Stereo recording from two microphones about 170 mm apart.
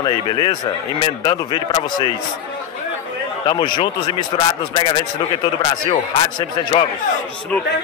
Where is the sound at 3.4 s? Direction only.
30° left (ahead or behind).